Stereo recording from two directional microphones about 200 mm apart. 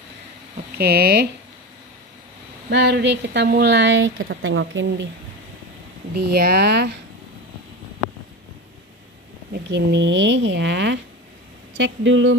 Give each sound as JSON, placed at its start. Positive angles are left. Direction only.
{"t": 0.7, "sound": "speech", "side_deg": -50}
{"t": 2.7, "sound": "a woman's voice", "side_deg": -60}
{"t": 6.1, "sound": "a woman's voice", "side_deg": -50}
{"t": 9.5, "sound": "a woman's voice", "side_deg": -60}